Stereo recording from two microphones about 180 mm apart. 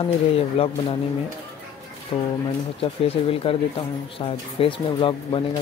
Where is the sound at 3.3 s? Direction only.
30° left (ahead or behind).